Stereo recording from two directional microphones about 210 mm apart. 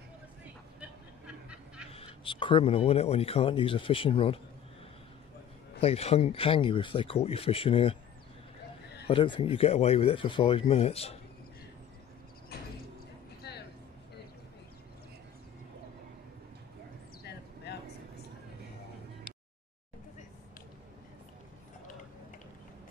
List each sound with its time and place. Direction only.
0.7 s vehicle: 5° right (ahead or behind)
1.9 s speech: 25° left (ahead or behind)
5.8 s speech: 30° left (ahead or behind)
9.0 s speech: 25° left (ahead or behind)
12.5 s a sound: 50° left (ahead or behind)
17.2 s a sound: 50° left (ahead or behind)